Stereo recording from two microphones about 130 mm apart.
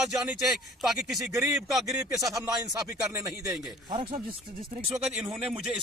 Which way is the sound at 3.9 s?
40° right (ahead or behind).